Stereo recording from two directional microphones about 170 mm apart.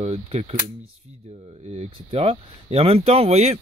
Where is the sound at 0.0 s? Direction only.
40° right (ahead or behind).